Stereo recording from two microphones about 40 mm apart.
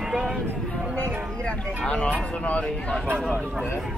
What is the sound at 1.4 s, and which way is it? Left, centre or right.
Speech, left.